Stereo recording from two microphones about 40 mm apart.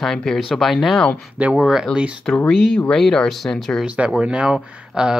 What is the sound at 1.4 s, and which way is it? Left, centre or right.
Speech, right.